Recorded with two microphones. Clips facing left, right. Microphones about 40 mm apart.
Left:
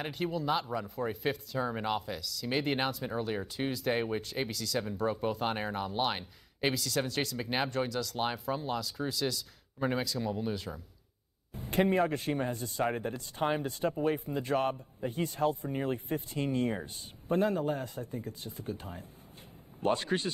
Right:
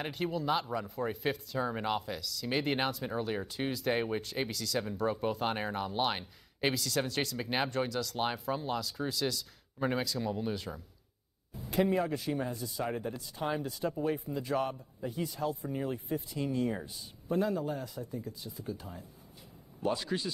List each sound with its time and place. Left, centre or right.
0.0 s speech: centre
11.5 s speech: left